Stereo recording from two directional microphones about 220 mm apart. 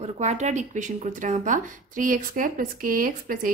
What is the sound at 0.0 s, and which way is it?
A woman's voice, 30° right (ahead or behind).